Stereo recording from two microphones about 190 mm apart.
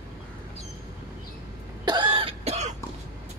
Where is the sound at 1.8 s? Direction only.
25° right (ahead or behind).